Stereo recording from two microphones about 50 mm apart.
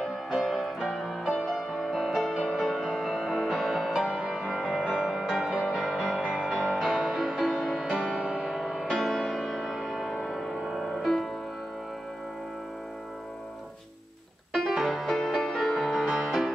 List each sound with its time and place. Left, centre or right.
0.0 s music: centre
5.4 s music: centre
5.9 s music: centre
6.1 s music: centre
6.5 s music: centre
7.4 s music: centre
8.2 s music: centre
8.5 s music: centre
14.8 s music: centre